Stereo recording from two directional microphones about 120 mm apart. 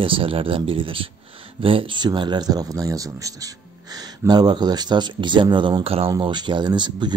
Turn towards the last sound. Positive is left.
turn(degrees=-40)  # may be behind; listen again after turning